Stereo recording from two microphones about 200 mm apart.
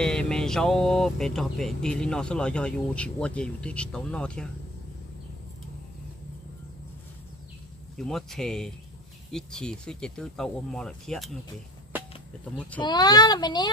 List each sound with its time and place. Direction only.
0.0 s speech: 5° left (ahead or behind)
8.0 s speech: centre (ahead or behind)
12.5 s speech: 5° left (ahead or behind)
12.8 s a child's voice: 20° left (ahead or behind)